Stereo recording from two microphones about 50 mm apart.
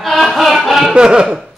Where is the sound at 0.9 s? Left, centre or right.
Centre.